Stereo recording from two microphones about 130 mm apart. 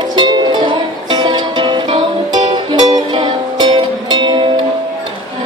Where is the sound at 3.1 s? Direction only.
35° right (ahead or behind).